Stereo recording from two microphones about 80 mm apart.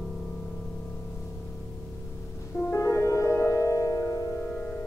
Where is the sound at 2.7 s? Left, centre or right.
Left.